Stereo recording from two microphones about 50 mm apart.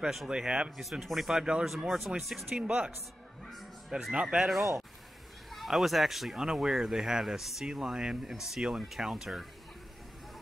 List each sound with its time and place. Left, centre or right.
0.3 s speech: centre
0.7 s speech: centre
2.5 s speech: right
4.1 s speech: centre
4.4 s speech: centre